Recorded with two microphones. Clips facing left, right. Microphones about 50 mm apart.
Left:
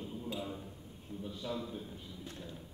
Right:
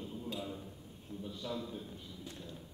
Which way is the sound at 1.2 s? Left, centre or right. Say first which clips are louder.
Left 1 dB; centre.